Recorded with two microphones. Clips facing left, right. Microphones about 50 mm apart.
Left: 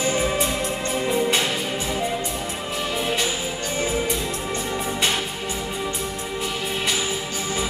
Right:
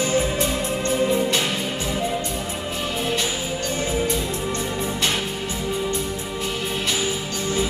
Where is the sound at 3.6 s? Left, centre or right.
Centre.